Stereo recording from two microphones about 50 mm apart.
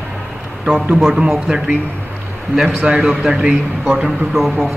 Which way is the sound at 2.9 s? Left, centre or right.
Centre.